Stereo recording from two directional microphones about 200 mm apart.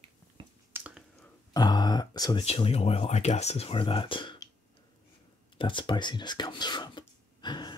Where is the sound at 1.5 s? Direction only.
20° left (ahead or behind).